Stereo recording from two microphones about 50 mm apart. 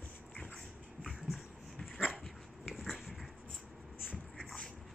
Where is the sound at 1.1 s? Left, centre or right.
Centre.